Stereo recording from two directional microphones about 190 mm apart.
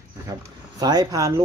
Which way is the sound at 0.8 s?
20° right (ahead or behind).